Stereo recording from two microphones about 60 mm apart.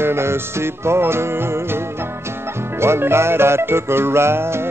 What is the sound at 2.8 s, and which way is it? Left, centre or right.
Music, right.